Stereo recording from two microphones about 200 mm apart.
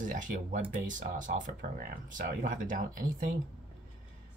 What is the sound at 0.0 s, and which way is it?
Speech, 45° right (ahead or behind).